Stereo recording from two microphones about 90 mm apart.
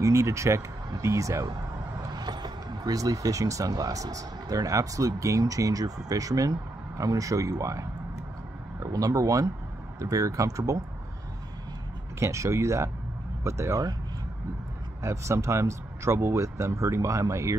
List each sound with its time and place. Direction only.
0.0 s speech: 35° right (ahead or behind)
2.0 s speech: 50° right (ahead or behind)
12.2 s speech: 35° right (ahead or behind)
15.0 s speech: 30° right (ahead or behind)